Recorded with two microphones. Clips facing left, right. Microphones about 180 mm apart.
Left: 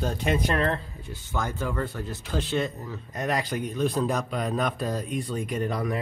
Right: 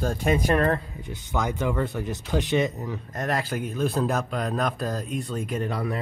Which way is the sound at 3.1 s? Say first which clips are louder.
Even; centre (ahead or behind).